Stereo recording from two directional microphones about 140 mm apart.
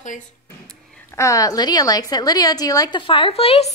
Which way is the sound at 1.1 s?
20° left (ahead or behind).